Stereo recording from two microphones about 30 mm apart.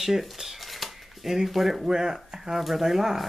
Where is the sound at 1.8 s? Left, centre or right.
Centre.